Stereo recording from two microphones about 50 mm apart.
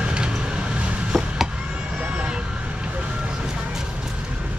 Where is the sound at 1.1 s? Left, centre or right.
Centre.